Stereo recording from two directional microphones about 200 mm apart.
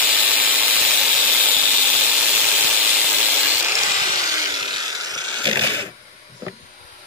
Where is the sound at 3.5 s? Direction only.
10° right (ahead or behind).